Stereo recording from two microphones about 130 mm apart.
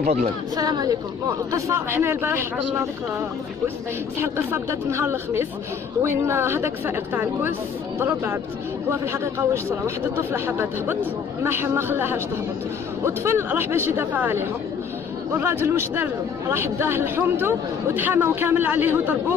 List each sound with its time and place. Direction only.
0.0 s speech: 55° right (ahead or behind)
0.6 s speech: 30° right (ahead or behind)
1.5 s speech: 20° right (ahead or behind)
4.2 s speech: 20° right (ahead or behind)